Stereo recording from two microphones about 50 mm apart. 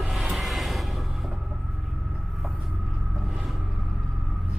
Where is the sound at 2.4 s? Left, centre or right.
Centre.